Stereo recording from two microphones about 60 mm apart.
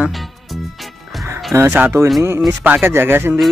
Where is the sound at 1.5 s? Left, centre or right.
Right.